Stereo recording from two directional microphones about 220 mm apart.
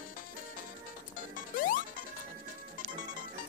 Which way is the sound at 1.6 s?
40° left (ahead or behind).